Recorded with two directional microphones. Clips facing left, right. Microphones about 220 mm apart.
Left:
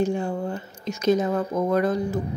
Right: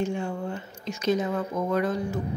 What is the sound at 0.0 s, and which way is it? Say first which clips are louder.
Speech: left 4 dB; 35° left (ahead or behind).